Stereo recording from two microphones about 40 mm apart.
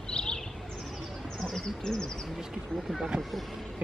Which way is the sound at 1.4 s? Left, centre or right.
Centre.